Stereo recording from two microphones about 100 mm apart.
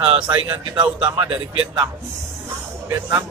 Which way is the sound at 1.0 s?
55° right (ahead or behind).